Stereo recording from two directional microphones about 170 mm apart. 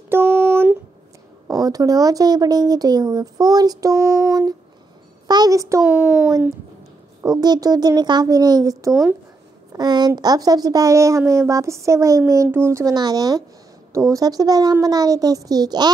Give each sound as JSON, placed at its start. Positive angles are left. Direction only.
{"t": 0.1, "sound": "a sound", "side_deg": -15}
{"t": 1.5, "sound": "a woman's voice", "side_deg": -20}
{"t": 5.9, "sound": "speech", "side_deg": -5}
{"t": 7.2, "sound": "a woman's voice", "side_deg": -20}